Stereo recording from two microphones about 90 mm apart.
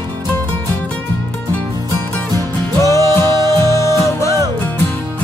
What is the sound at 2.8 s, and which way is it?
Music, 35° left (ahead or behind).